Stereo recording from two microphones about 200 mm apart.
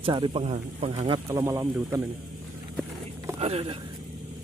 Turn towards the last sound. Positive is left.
turn(degrees=-30)  # may be behind; listen again after turning